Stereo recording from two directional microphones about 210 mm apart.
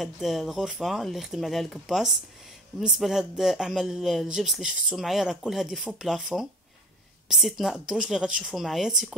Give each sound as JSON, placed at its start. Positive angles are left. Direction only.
{"t": 0.0, "sound": "speech", "side_deg": 0}